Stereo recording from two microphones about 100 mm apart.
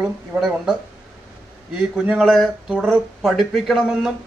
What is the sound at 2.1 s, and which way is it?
Speech, centre (ahead or behind).